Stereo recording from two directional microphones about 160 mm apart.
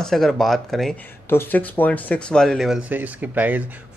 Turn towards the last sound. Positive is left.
turn(degrees=-10)  # may be behind; listen again after turning